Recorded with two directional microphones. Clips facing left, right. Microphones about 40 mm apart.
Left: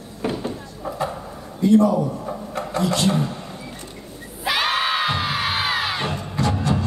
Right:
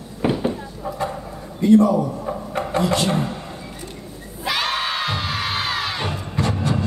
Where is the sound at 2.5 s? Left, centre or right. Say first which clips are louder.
Right 2 dB; right.